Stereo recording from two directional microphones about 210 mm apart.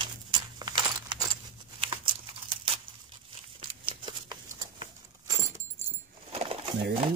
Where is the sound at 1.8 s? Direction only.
25° right (ahead or behind).